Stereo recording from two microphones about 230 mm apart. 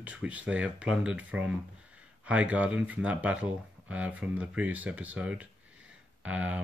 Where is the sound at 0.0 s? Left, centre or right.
Centre.